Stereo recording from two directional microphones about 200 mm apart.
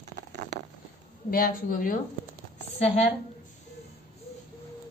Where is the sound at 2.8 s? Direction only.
30° left (ahead or behind).